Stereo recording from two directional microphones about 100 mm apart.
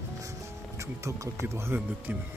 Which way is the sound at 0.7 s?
30° right (ahead or behind).